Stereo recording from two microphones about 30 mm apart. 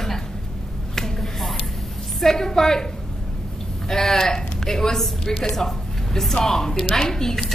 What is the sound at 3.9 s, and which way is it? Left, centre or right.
Speech, centre.